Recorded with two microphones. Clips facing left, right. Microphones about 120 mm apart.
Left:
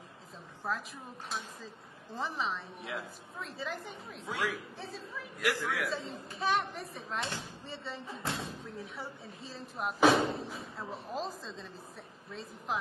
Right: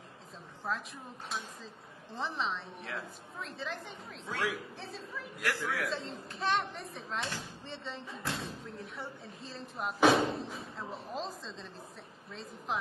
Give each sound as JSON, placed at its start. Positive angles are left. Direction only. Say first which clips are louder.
{"t": 0.7, "sound": "speech", "louder": "even", "side_deg": 5}
{"t": 2.1, "sound": "speech", "louder": "even", "side_deg": 0}